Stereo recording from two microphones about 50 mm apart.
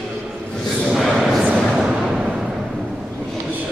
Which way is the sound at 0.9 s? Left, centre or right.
Centre.